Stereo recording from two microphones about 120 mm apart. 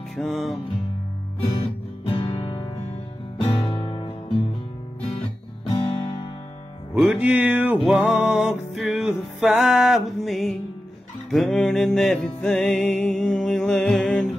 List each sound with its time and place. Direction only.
0.1 s music: centre (ahead or behind)
1.6 s music: 45° left (ahead or behind)
2.2 s music: 35° left (ahead or behind)
3.3 s music: 50° left (ahead or behind)
5.2 s guitar: 50° left (ahead or behind)
7.0 s music: 10° right (ahead or behind); by 14.3 s 5° left (ahead or behind)